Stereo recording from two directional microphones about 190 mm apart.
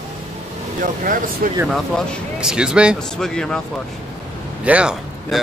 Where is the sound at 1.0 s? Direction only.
45° right (ahead or behind).